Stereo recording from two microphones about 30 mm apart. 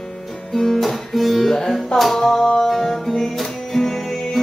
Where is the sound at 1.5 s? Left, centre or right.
Centre.